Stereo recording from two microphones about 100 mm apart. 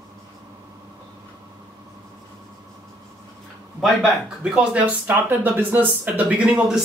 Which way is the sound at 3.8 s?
5° right (ahead or behind).